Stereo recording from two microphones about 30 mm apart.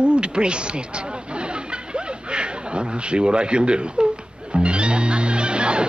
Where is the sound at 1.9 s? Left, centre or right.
Right.